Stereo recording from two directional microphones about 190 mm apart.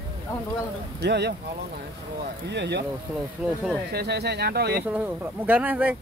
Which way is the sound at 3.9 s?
60° right (ahead or behind).